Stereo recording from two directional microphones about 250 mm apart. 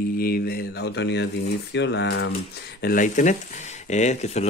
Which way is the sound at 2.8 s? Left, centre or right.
Left.